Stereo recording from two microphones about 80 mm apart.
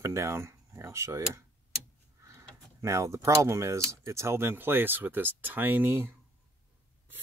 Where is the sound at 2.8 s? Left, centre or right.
Right.